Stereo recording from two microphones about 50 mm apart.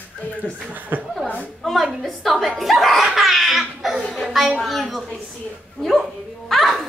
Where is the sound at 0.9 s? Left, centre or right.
Right.